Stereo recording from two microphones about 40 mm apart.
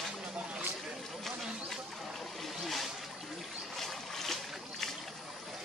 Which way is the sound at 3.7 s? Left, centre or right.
Centre.